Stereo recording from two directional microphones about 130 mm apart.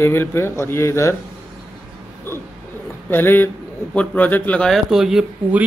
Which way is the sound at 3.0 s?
15° left (ahead or behind).